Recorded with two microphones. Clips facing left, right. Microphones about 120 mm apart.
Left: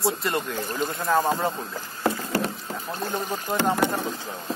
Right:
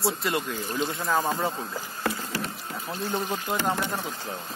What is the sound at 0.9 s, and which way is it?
Speech, centre (ahead or behind).